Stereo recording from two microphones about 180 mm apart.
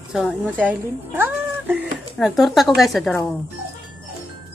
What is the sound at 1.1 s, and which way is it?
Cat, 10° right (ahead or behind).